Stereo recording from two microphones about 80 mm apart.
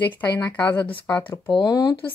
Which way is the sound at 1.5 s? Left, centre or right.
Left.